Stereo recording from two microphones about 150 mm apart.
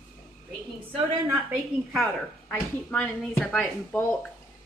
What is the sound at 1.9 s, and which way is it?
Speech, centre (ahead or behind).